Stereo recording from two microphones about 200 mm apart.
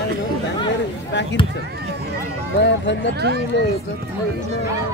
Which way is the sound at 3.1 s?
55° right (ahead or behind).